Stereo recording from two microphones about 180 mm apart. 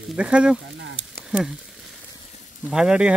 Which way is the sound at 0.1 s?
5° right (ahead or behind).